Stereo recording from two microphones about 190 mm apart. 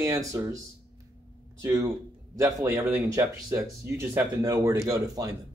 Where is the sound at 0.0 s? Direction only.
15° right (ahead or behind).